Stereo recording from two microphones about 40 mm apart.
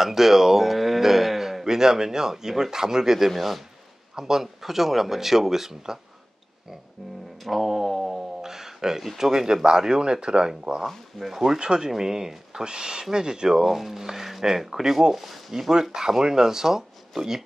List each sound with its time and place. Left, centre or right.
0.0 s speech: centre
3.3 s speech: centre
4.1 s speech: centre
7.4 s a sound: centre
9.2 s speech: centre
10.9 s speech: centre
11.3 s speech: centre
15.7 s speech: centre